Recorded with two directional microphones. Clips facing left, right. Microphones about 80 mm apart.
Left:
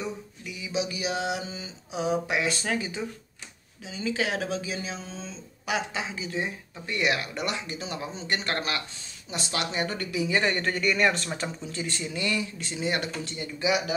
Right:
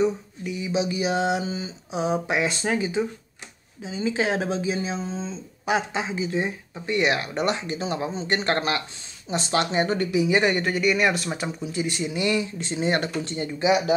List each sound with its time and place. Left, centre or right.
0.0 s speech: right